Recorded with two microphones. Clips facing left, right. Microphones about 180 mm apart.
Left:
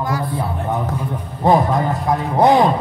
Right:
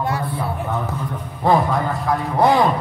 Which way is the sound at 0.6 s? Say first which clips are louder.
Left 3 dB; 15° left (ahead or behind).